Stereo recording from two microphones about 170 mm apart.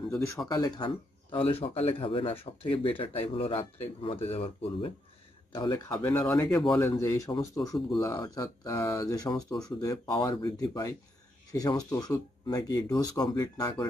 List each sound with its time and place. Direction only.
0.5 s speech: 20° left (ahead or behind)
6.0 s speech: 10° left (ahead or behind)